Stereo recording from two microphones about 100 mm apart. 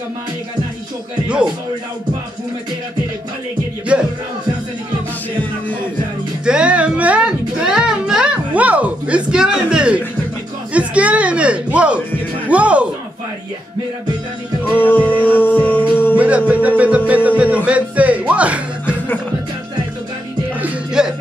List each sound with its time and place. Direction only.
3.9 s speech: 10° right (ahead or behind)
6.4 s music: 10° right (ahead or behind)
10.7 s a sound: 15° right (ahead or behind)
12.4 s speech: 15° right (ahead or behind)
14.8 s music: 20° left (ahead or behind)
16.2 s music: 15° right (ahead or behind)
20.6 s music: 5° right (ahead or behind)